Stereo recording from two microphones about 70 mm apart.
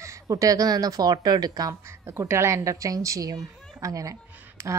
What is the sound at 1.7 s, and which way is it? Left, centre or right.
Speech, right.